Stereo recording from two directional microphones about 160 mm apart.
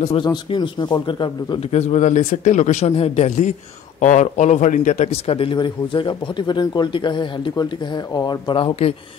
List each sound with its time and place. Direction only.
0.2 s speech: 25° left (ahead or behind)
1.6 s a man's voice: 45° left (ahead or behind)